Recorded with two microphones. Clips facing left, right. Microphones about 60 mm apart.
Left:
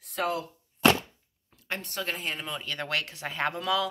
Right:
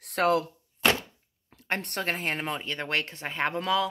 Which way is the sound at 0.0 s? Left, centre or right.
Right.